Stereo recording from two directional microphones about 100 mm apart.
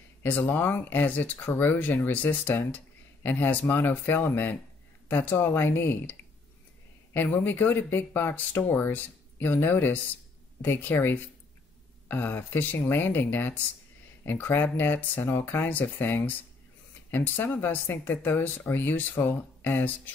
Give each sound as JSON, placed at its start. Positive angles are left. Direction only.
{"t": 0.2, "sound": "speech", "side_deg": 20}
{"t": 7.2, "sound": "speech", "side_deg": 20}